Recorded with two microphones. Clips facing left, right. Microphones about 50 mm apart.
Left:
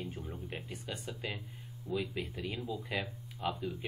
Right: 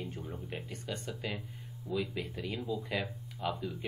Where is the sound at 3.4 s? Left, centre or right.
Centre.